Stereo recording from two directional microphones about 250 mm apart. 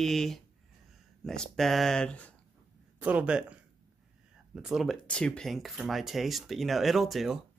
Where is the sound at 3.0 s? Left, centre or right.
Centre.